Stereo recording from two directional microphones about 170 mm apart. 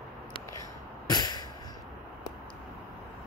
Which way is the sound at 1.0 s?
25° left (ahead or behind).